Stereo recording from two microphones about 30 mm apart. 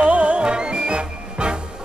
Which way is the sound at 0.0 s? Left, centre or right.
Right.